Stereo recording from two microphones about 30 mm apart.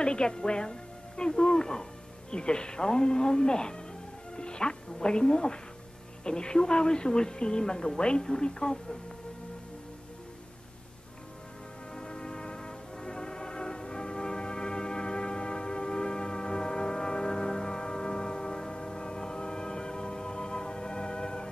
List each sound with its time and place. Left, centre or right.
0.0 s a woman's voice: left
11.9 s music: left